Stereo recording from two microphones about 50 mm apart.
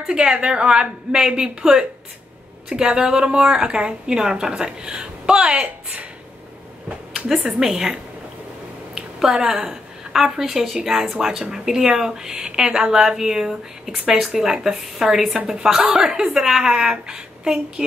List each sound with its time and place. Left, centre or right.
0.0 s a woman's voice: centre
7.2 s a sound: centre
7.4 s a woman's voice: centre